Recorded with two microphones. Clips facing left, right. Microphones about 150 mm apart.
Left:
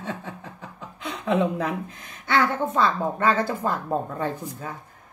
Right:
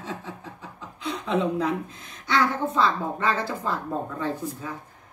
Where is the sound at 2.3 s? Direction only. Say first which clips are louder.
Left 1 dB; 55° left (ahead or behind).